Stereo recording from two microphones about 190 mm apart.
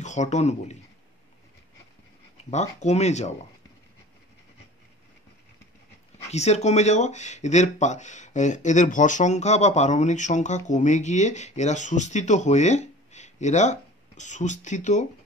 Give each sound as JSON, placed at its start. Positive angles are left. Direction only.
{"t": 0.0, "sound": "speech", "side_deg": 40}
{"t": 2.5, "sound": "speech", "side_deg": 35}
{"t": 6.3, "sound": "speech", "side_deg": 35}